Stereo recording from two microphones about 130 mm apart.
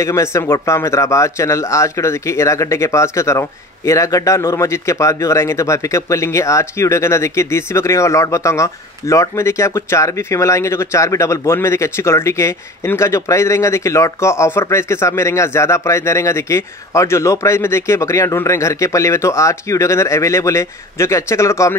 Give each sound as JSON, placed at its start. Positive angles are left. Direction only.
{"t": 0.0, "sound": "speech", "side_deg": 20}